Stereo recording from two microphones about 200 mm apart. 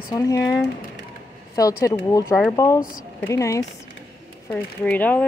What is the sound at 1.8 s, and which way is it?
Speech, 15° left (ahead or behind).